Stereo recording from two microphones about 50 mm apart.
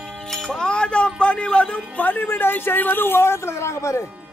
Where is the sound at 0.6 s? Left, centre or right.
Centre.